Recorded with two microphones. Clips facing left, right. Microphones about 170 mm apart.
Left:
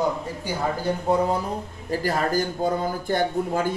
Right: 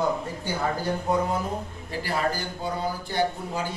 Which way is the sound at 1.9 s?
45° left (ahead or behind).